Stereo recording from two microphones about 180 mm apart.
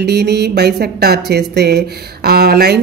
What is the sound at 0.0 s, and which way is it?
A woman's voice, 65° right (ahead or behind).